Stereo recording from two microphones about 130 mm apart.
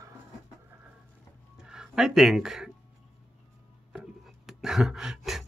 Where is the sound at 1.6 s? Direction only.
5° right (ahead or behind).